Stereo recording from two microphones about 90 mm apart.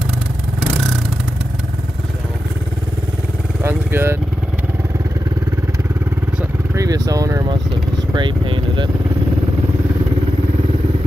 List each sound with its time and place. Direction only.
3.6 s speech: 25° right (ahead or behind)
6.7 s speech: 40° right (ahead or behind)
8.1 s speech: 60° right (ahead or behind)